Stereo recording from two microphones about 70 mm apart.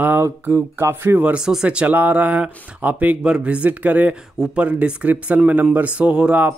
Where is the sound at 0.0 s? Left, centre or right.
Right.